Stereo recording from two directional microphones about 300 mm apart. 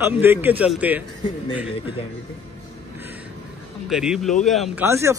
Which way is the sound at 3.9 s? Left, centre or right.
Centre.